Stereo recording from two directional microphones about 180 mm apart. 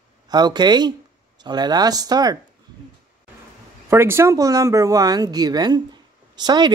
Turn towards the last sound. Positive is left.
turn(degrees=-25)  # may be behind; listen again after turning